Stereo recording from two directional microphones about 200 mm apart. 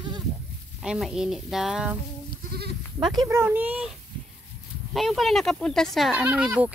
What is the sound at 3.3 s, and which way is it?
Speech, 10° right (ahead or behind).